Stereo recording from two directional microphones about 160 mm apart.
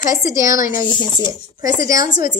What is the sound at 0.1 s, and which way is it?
Speech, 20° right (ahead or behind).